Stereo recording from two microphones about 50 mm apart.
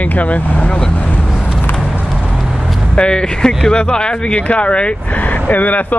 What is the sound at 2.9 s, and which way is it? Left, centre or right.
Speech, centre.